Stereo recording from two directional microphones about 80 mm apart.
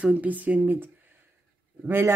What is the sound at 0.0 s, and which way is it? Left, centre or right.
Speech, centre.